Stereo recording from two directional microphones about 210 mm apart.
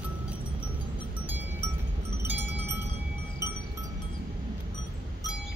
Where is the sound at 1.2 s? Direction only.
10° right (ahead or behind).